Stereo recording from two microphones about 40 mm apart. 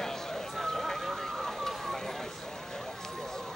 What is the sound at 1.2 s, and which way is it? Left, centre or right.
Fire, centre.